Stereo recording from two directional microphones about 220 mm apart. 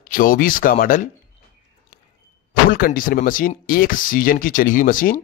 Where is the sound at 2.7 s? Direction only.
40° left (ahead or behind).